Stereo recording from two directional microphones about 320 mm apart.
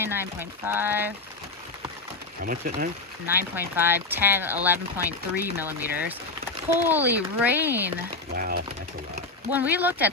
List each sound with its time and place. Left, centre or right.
0.0 s speech: centre
2.4 s speech: right
3.3 s speech: centre
8.4 s speech: right
9.5 s speech: centre